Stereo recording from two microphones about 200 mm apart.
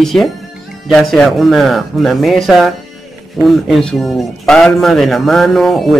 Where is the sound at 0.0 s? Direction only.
Centre (ahead or behind).